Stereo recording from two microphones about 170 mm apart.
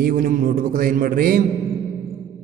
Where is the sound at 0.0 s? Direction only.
55° right (ahead or behind).